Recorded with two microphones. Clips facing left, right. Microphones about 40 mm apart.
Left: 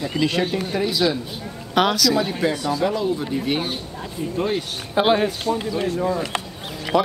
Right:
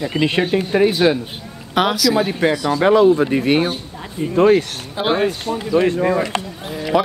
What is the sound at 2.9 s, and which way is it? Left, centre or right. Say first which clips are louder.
Speech: right 10 dB; right.